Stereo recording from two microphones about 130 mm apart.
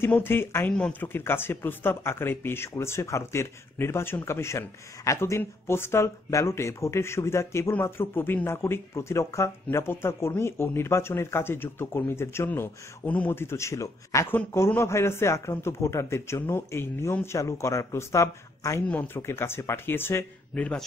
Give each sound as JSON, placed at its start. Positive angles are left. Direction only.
{"t": 0.0, "sound": "a man's voice", "side_deg": 15}